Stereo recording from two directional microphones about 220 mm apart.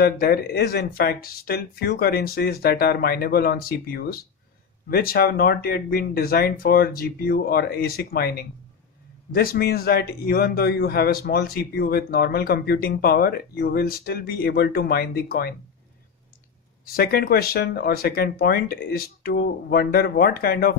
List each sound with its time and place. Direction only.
0.0 s a man's voice: 45° left (ahead or behind)
16.8 s a man's voice: 45° left (ahead or behind)